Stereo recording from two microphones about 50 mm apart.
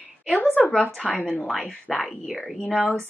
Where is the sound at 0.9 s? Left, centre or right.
Centre.